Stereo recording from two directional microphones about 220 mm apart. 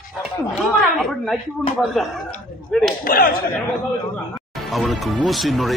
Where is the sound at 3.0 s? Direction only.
40° left (ahead or behind).